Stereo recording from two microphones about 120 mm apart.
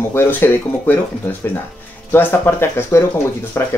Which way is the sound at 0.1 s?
15° left (ahead or behind).